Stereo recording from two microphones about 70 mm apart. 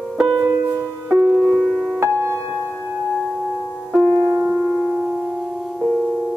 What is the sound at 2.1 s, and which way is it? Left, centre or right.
Music, right.